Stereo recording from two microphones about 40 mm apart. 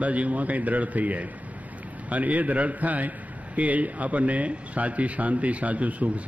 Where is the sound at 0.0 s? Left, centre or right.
Right.